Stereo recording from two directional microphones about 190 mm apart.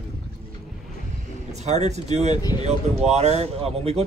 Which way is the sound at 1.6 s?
35° right (ahead or behind).